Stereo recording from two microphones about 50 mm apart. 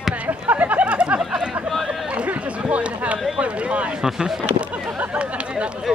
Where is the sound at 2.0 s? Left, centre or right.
Right.